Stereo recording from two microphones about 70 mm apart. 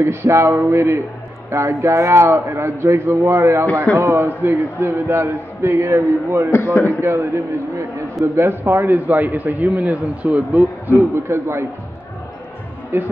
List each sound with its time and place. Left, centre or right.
0.0 s a man's voice: right
2.3 s a man's voice: right
3.3 s a man's voice: right
3.9 s a man's voice: right
6.5 s a man's voice: left
7.0 s a man's voice: right
11.2 s a man's voice: right
12.9 s a man's voice: right